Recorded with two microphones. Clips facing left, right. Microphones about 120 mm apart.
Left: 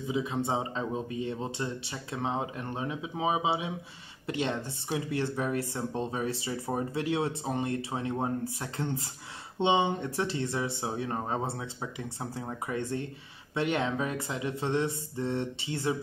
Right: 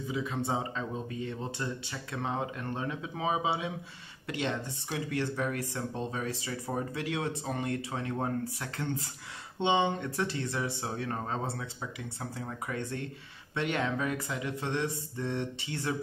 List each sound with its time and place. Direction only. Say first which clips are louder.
0.1 s speech: left 3 dB; 20° left (ahead or behind)
10.0 s speech: left 2 dB; 25° left (ahead or behind)
11.8 s speech: left 2 dB; 30° left (ahead or behind)